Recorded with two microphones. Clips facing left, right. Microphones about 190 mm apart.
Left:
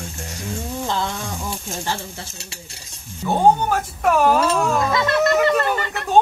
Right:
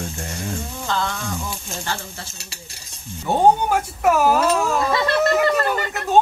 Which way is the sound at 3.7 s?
10° right (ahead or behind).